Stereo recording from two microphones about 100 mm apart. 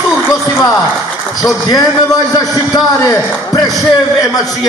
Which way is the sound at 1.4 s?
35° left (ahead or behind).